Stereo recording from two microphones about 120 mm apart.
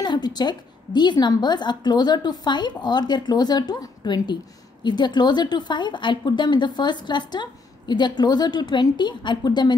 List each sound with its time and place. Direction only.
0.0 s a woman's voice: 35° left (ahead or behind)